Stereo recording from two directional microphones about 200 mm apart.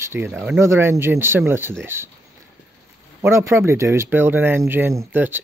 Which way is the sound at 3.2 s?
15° right (ahead or behind).